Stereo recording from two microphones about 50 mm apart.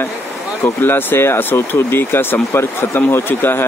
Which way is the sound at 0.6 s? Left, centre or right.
Left.